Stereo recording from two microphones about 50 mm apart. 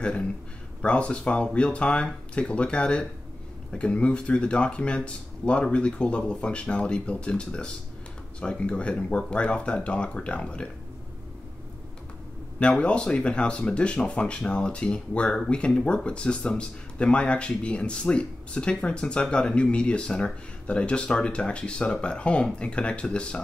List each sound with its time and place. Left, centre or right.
0.0 s speech: left
12.5 s speech: left